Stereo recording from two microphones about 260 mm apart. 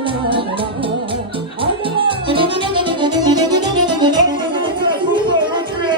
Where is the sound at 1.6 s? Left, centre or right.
Centre.